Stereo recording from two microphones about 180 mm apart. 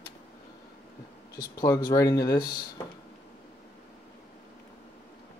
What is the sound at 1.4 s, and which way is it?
Speech, 20° left (ahead or behind).